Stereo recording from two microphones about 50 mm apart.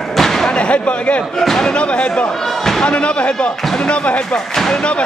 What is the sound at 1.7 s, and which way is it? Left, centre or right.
A man's voice, left.